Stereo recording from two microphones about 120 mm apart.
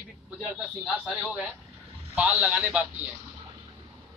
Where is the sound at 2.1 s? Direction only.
10° right (ahead or behind).